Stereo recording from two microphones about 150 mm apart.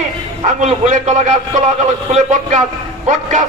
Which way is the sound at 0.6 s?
55° right (ahead or behind).